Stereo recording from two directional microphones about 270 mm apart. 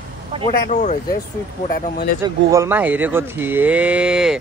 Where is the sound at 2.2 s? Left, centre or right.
Centre.